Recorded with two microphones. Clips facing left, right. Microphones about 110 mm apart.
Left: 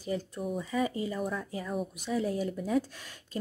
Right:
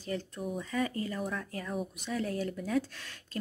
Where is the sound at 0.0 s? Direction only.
5° left (ahead or behind).